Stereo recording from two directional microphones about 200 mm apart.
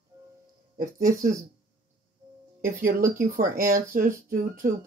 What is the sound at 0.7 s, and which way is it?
Speech, 45° right (ahead or behind).